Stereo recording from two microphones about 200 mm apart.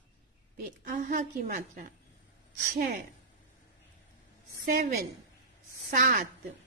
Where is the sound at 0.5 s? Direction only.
40° right (ahead or behind).